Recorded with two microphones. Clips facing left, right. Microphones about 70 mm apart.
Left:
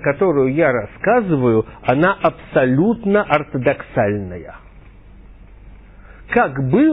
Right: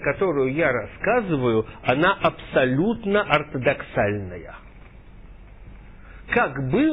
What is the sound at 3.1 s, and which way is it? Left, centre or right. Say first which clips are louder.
Speech: left 4 dB; left.